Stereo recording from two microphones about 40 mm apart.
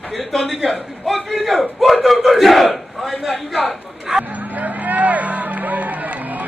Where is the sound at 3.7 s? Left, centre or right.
Centre.